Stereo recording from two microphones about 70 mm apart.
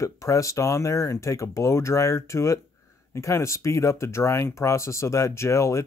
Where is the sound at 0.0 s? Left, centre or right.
Left.